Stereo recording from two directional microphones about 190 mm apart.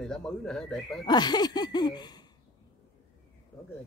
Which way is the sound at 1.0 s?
20° left (ahead or behind).